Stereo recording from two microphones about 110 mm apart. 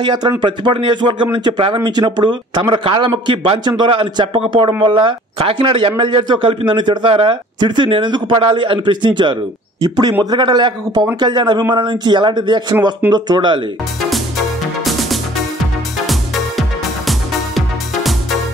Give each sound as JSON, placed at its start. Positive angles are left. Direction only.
{"t": 0.0, "sound": "a man's voice", "side_deg": -40}
{"t": 14.9, "sound": "music", "side_deg": 0}